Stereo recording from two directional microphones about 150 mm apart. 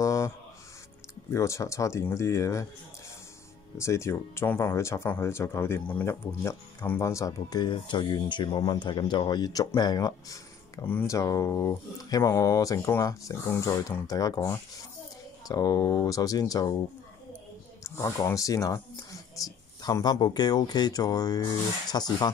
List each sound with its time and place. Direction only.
0.0 s a sound: 20° left (ahead or behind)
1.3 s speech: 20° left (ahead or behind)
3.7 s speech: 20° left (ahead or behind)
17.8 s speech: 20° left (ahead or behind)